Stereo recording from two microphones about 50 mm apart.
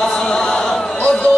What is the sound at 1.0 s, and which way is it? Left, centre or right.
Music, left.